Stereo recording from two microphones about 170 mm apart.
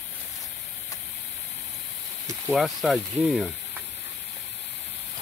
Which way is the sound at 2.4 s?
Centre (ahead or behind).